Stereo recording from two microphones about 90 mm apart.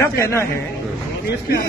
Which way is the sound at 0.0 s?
30° left (ahead or behind).